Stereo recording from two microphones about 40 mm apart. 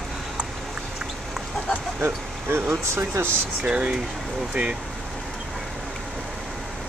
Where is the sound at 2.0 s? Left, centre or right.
Right.